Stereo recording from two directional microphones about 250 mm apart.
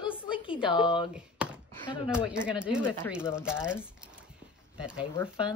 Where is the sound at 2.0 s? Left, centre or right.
Centre.